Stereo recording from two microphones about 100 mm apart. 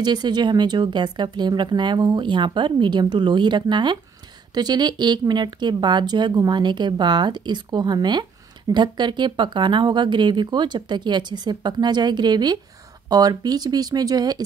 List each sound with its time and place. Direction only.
0.0 s speech: 45° right (ahead or behind)